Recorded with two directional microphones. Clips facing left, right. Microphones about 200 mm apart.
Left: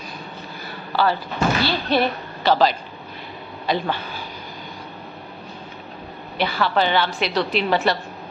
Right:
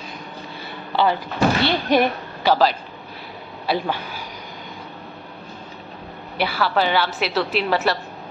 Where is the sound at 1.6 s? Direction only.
15° right (ahead or behind).